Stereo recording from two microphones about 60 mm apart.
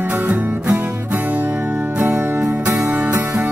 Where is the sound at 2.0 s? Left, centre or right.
Right.